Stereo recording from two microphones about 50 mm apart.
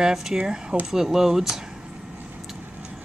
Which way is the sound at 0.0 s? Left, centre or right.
Centre.